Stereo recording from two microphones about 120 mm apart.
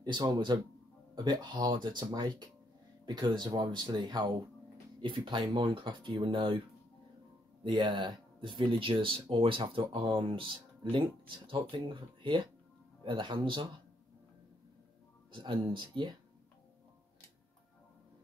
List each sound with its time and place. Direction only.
0.0 s speech: 35° right (ahead or behind)
7.6 s speech: 40° right (ahead or behind)
15.3 s speech: 40° right (ahead or behind)